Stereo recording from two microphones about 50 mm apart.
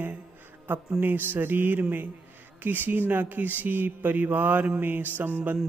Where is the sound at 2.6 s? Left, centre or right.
Right.